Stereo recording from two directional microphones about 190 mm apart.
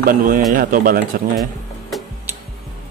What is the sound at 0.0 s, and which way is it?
Speech, 45° right (ahead or behind).